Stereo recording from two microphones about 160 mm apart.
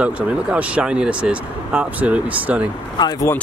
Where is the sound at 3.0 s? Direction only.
25° left (ahead or behind).